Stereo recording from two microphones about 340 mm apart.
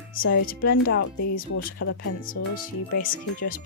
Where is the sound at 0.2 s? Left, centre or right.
Left.